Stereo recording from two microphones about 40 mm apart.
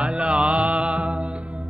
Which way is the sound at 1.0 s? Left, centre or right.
Right.